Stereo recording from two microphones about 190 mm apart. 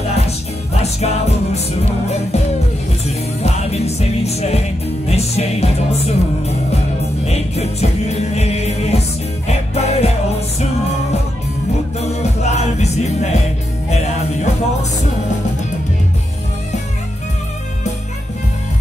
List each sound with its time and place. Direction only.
0.7 s music: 35° left (ahead or behind)
3.4 s music: 35° left (ahead or behind)
7.2 s music: 35° left (ahead or behind)
12.0 s music: 35° left (ahead or behind)